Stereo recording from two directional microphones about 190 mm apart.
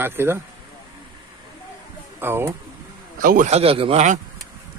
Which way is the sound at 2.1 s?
10° right (ahead or behind).